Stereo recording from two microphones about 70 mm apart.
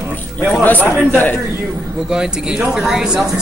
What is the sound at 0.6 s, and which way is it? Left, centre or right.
Speech, left.